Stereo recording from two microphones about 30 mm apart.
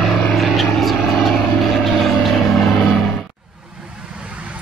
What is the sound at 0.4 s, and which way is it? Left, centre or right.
Vehicle, centre.